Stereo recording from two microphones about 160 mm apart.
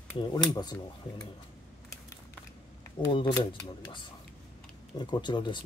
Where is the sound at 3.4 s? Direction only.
30° left (ahead or behind).